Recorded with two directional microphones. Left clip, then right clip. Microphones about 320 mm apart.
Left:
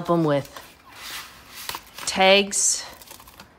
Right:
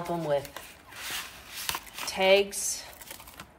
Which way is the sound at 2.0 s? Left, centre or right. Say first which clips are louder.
Left 6 dB; left.